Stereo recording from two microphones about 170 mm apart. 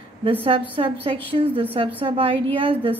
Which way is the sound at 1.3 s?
30° right (ahead or behind).